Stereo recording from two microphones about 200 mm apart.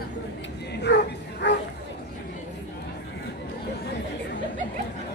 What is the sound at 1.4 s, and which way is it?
Bow-wow, 60° left (ahead or behind).